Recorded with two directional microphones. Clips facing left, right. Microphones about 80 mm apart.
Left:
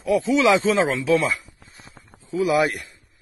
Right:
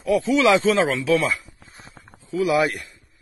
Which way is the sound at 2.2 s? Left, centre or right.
Left.